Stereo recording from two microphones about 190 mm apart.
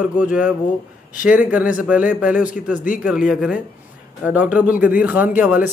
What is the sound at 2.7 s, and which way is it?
Speech, 45° left (ahead or behind).